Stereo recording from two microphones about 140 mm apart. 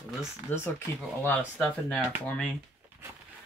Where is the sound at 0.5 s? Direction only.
15° left (ahead or behind).